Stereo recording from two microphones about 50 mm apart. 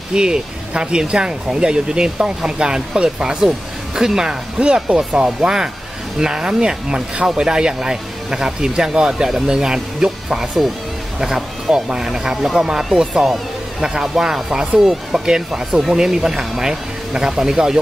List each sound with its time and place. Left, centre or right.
0.1 s speech: centre